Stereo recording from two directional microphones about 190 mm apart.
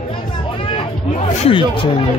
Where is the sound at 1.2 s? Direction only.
30° left (ahead or behind).